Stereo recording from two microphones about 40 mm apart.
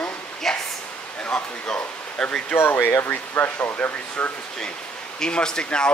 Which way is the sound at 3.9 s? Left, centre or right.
Left.